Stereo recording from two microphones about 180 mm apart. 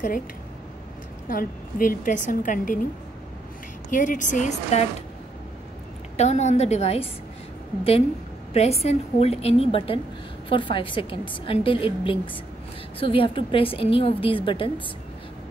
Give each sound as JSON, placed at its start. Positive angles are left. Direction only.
{"t": 1.3, "sound": "a woman's voice", "side_deg": 50}
{"t": 3.9, "sound": "a woman's voice", "side_deg": 45}
{"t": 6.1, "sound": "a woman's voice", "side_deg": 40}
{"t": 8.5, "sound": "a woman's voice", "side_deg": 35}